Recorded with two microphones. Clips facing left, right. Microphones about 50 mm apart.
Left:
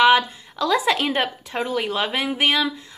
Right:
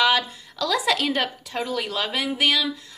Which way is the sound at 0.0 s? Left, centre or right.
Left.